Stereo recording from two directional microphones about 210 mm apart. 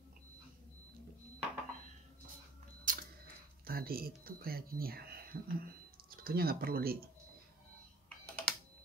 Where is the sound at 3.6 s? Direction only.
45° right (ahead or behind).